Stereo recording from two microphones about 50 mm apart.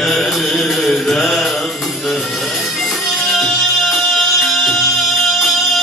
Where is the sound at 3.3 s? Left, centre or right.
Centre.